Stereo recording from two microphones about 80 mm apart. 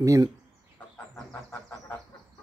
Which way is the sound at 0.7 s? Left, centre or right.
Left.